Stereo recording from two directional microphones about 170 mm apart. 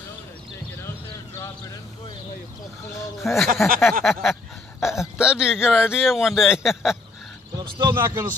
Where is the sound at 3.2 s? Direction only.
Centre (ahead or behind).